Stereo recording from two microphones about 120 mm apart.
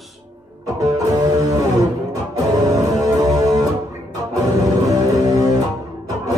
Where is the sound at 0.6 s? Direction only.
30° right (ahead or behind).